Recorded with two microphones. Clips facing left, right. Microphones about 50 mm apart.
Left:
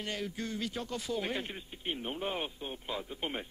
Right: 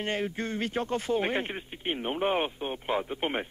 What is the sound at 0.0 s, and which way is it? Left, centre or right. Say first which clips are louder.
Speech: right 7 dB; right.